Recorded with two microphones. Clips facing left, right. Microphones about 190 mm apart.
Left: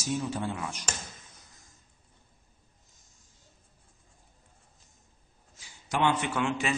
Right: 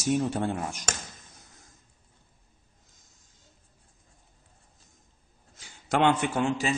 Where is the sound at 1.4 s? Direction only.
55° right (ahead or behind).